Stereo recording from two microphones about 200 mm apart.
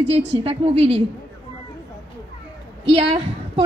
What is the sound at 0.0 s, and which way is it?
A woman's voice, 30° right (ahead or behind).